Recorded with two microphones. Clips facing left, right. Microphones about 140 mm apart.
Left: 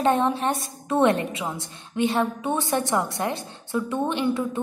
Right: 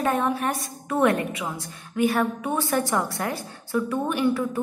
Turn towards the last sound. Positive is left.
turn(degrees=20)  # may be behind; listen again after turning